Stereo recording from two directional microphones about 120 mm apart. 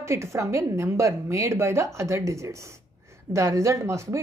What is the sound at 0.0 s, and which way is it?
A woman's voice, 25° right (ahead or behind).